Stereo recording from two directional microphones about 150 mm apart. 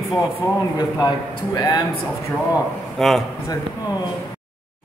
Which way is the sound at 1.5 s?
25° left (ahead or behind).